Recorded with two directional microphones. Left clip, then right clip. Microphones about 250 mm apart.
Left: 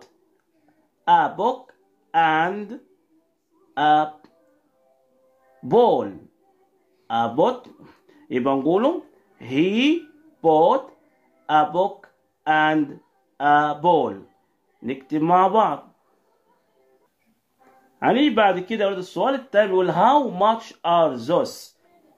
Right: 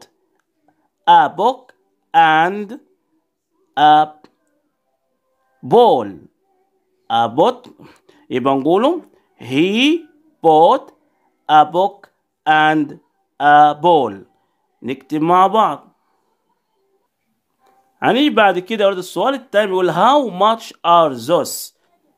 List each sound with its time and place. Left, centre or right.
1.0 s speech: right
5.7 s speech: right
17.9 s speech: right